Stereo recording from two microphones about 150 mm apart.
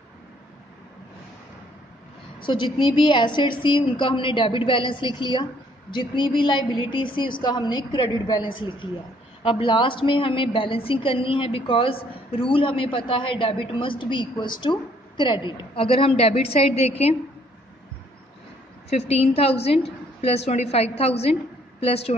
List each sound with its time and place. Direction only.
2.4 s a woman's voice: 30° left (ahead or behind)
18.9 s a woman's voice: 45° left (ahead or behind)